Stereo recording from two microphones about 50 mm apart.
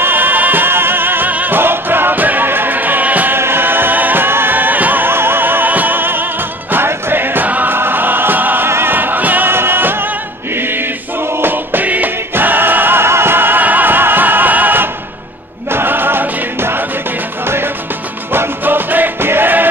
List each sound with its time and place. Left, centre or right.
0.0 s opera: right
1.3 s music: right
1.6 s music: right
3.3 s music: right
8.6 s music: right
8.9 s music: right
11.4 s music: right
18.3 s music: right